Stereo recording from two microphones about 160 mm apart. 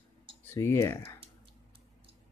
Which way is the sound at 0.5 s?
20° left (ahead or behind).